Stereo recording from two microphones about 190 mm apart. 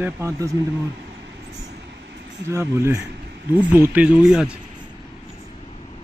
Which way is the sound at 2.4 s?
15° right (ahead or behind).